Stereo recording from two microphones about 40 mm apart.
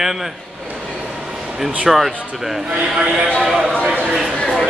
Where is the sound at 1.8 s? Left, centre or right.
Centre.